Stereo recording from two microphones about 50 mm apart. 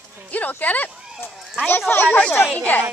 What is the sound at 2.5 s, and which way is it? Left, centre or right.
Speech, left.